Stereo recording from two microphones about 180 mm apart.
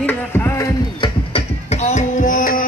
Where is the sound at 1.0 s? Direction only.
35° left (ahead or behind).